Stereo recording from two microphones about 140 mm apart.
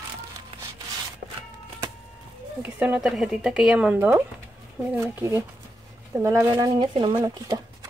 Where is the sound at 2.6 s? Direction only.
10° right (ahead or behind); by 7.3 s 40° right (ahead or behind).